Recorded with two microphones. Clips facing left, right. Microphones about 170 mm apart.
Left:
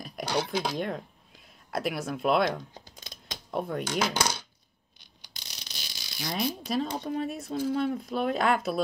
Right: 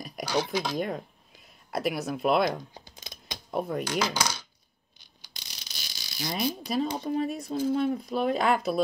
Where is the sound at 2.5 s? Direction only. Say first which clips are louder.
Even; 20° right (ahead or behind).